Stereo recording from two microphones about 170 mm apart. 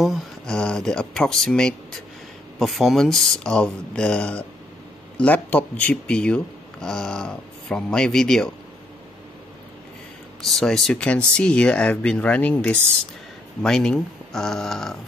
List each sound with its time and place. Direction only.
0.0 s speech: centre (ahead or behind)
10.4 s speech: centre (ahead or behind)